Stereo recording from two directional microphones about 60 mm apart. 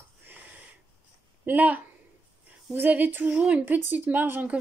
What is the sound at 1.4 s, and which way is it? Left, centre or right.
A woman's voice, right.